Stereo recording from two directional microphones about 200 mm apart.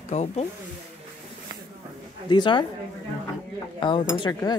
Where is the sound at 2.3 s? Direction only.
25° left (ahead or behind).